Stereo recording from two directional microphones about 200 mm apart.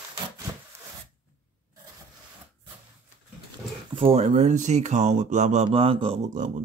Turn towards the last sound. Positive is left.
turn(degrees=-35)  # may be behind; listen again after turning